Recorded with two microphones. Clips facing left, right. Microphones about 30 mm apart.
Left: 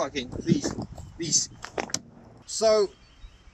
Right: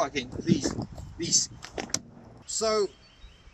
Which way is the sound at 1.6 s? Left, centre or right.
Left.